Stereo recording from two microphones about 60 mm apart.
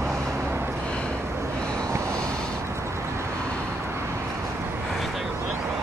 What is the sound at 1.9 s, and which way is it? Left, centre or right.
Vehicle, right.